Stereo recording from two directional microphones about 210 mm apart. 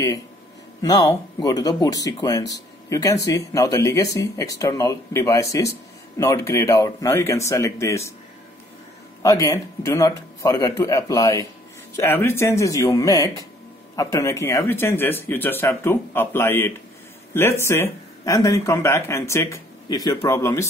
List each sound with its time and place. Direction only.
0.8 s speech: 20° left (ahead or behind)
9.2 s speech: 15° left (ahead or behind)